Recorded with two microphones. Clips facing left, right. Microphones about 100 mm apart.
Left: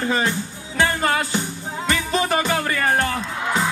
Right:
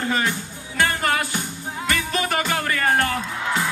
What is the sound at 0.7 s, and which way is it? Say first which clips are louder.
Music: left 2 dB; 20° left (ahead or behind).